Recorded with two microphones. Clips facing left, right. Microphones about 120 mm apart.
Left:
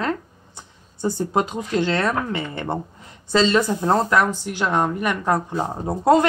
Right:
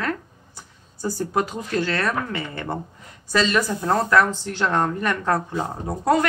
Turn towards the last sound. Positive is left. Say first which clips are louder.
# left 4 dB
turn(degrees=25)  # may be behind; listen again after turning